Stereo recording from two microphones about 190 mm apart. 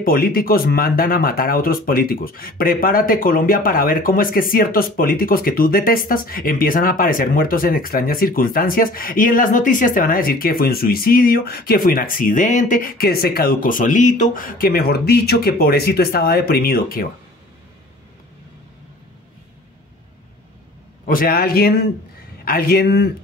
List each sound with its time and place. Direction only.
0.0 s speech: 50° left (ahead or behind)
21.1 s a man's voice: 50° left (ahead or behind)